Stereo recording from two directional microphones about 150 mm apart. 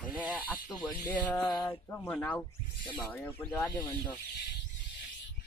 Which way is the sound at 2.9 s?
15° left (ahead or behind).